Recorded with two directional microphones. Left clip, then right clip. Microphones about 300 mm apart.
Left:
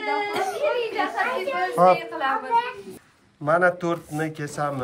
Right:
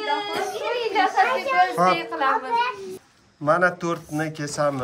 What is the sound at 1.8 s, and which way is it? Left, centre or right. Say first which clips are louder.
Speech: left 6 dB; centre.